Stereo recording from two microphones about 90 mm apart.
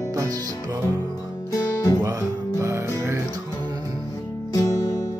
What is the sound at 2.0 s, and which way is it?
Music, 40° right (ahead or behind).